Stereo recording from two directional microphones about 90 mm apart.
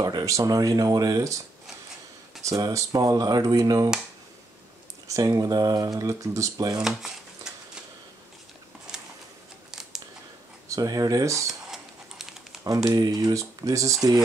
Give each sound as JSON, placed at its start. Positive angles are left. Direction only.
{"t": 0.0, "sound": "speech", "side_deg": -40}
{"t": 2.4, "sound": "speech", "side_deg": -35}
{"t": 5.0, "sound": "speech", "side_deg": -40}
{"t": 6.8, "sound": "a sound", "side_deg": -5}
{"t": 9.7, "sound": "scissors", "side_deg": -5}
{"t": 10.7, "sound": "speech", "side_deg": -45}
{"t": 11.7, "sound": "typing", "side_deg": -5}
{"t": 12.9, "sound": "speech", "side_deg": -50}